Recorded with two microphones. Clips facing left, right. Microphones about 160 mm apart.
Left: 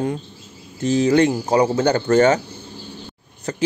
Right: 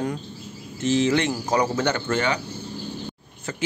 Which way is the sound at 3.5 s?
40° left (ahead or behind).